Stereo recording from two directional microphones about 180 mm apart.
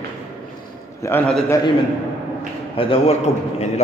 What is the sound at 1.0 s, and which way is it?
Speech, 10° left (ahead or behind).